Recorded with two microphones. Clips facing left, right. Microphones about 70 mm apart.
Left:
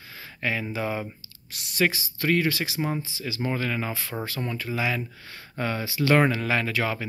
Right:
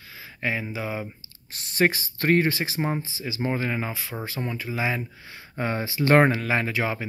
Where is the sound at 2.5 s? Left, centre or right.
Right.